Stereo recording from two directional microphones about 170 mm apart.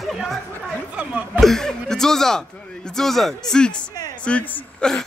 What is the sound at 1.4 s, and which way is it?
Speech, 5° left (ahead or behind).